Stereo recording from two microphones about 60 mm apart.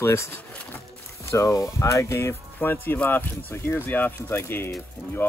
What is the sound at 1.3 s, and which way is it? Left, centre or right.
Speech, left.